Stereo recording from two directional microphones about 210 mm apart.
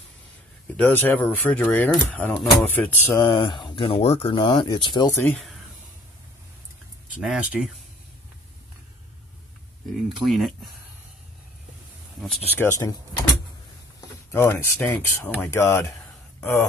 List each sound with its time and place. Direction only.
0.7 s speech: 10° left (ahead or behind)
3.2 s speech: 20° left (ahead or behind)
5.2 s speech: 5° left (ahead or behind)
7.2 s speech: 5° right (ahead or behind)
10.2 s speech: centre (ahead or behind)
12.2 s speech: 5° left (ahead or behind)
14.3 s speech: 10° left (ahead or behind)